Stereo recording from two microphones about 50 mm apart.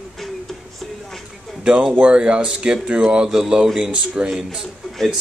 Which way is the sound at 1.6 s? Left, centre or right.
Centre.